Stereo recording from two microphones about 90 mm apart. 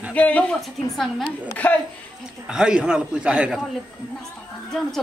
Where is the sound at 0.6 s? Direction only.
Centre (ahead or behind).